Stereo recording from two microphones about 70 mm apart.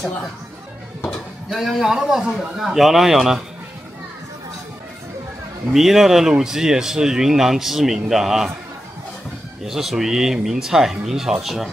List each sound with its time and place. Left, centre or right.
1.5 s speech: centre
5.7 s speech: centre
9.7 s speech: centre